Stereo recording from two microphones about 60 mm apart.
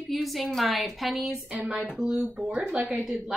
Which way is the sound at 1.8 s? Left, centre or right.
Centre.